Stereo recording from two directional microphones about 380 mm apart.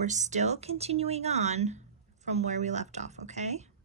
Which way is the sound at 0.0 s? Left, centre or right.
Centre.